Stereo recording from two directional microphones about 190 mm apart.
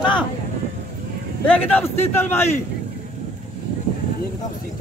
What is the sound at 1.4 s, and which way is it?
A man's voice, 10° left (ahead or behind).